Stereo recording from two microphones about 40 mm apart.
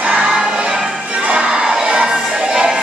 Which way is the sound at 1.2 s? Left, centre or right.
Right.